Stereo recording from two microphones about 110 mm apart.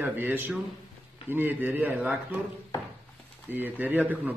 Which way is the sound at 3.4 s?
15° right (ahead or behind).